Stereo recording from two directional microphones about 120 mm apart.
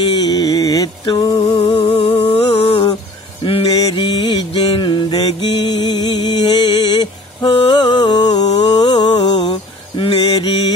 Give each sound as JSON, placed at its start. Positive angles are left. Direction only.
{"t": 0.0, "sound": "music", "side_deg": 40}
{"t": 1.6, "sound": "music", "side_deg": 45}
{"t": 2.0, "sound": "a sound", "side_deg": 30}
{"t": 3.8, "sound": "mantra", "side_deg": 40}